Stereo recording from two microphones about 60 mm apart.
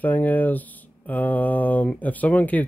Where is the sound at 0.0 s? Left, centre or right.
Left.